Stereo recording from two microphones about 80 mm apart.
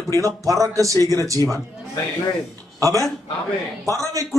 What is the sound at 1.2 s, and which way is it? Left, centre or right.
Speech, right.